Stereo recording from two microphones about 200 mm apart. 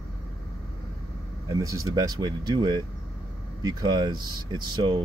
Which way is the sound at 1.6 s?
15° right (ahead or behind).